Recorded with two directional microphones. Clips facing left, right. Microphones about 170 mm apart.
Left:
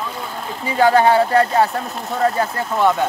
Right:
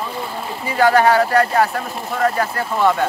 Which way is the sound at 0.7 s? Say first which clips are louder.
Even; 20° left (ahead or behind).